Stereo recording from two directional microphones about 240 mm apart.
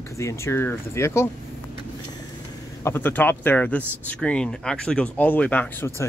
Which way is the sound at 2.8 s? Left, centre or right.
Centre.